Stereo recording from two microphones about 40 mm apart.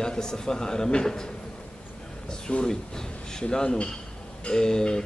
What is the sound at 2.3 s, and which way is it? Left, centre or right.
Speech, centre.